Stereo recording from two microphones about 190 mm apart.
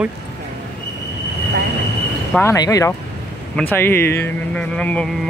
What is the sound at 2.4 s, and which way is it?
Speech, 15° left (ahead or behind).